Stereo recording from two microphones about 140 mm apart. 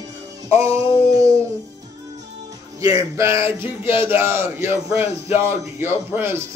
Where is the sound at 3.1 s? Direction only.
20° right (ahead or behind).